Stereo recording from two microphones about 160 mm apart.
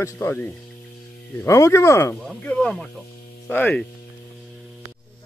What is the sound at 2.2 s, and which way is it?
Speech, 5° left (ahead or behind).